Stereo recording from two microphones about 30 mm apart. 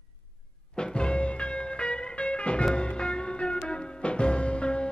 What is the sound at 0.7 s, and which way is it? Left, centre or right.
Music, left.